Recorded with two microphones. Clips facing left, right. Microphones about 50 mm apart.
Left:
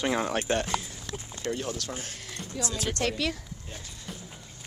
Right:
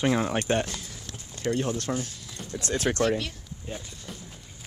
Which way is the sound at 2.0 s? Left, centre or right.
Left.